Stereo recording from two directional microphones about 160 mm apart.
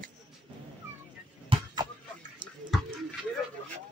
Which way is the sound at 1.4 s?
25° right (ahead or behind).